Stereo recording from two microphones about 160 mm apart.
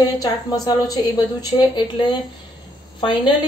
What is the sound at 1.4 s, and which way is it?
A woman's voice, 30° left (ahead or behind).